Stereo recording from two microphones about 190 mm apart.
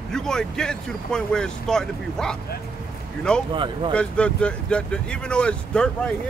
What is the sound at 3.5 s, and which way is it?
Speech, 25° right (ahead or behind).